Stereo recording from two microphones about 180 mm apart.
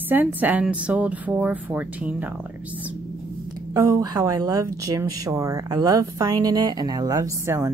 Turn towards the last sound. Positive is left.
turn(degrees=-15)  # may be behind; listen again after turning